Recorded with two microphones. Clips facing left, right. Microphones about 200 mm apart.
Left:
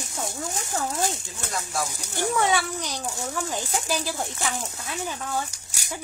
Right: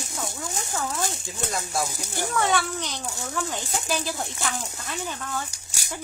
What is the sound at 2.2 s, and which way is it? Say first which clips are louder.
Speech: left 1 dB; 10° left (ahead or behind).